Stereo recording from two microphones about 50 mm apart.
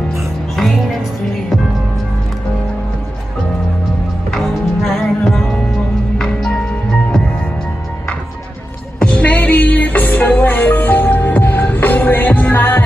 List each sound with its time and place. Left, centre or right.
0.1 s music: centre
4.3 s music: centre
9.0 s music: left